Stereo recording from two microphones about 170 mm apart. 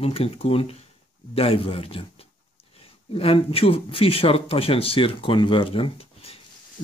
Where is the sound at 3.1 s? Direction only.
35° left (ahead or behind).